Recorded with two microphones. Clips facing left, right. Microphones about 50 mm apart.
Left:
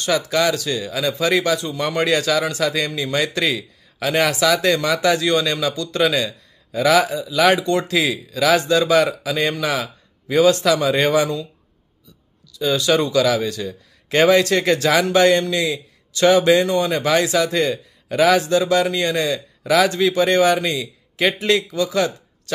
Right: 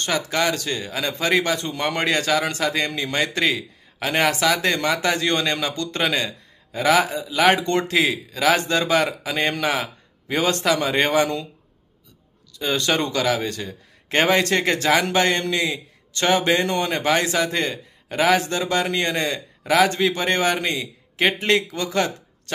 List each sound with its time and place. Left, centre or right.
0.0 s speech: right
12.5 s a man's voice: right
16.6 s speech: right
16.9 s speech: right